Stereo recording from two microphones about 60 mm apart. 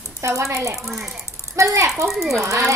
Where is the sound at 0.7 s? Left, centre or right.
Centre.